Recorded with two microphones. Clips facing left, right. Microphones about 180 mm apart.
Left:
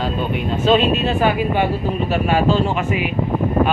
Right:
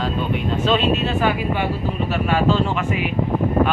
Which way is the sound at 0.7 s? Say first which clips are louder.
Left 4 dB; 15° left (ahead or behind).